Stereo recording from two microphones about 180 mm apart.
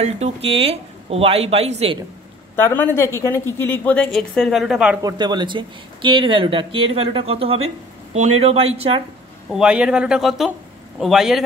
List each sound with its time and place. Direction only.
0.0 s speech: 35° right (ahead or behind)
2.5 s speech: 10° left (ahead or behind)
5.0 s speech: 25° right (ahead or behind)
9.5 s speech: 5° right (ahead or behind)